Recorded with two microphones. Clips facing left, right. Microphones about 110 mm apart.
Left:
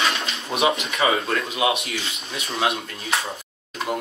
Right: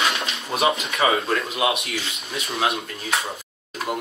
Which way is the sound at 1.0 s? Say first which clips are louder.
Right 1 dB; 30° right (ahead or behind).